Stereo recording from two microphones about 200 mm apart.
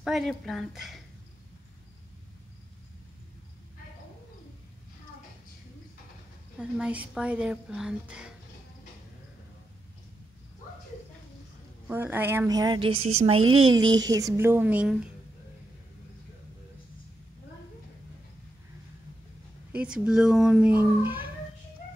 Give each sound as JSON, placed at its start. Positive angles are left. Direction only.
{"t": 0.0, "sound": "speech", "side_deg": 0}
{"t": 6.6, "sound": "speech", "side_deg": -5}
{"t": 11.9, "sound": "a woman's voice", "side_deg": -10}
{"t": 19.7, "sound": "speech", "side_deg": -5}